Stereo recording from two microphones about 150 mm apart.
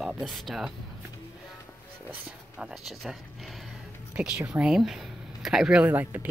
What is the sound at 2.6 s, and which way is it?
Speech, 5° right (ahead or behind).